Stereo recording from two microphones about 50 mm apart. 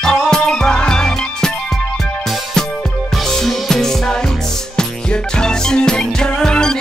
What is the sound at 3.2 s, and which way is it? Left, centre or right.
Music, centre.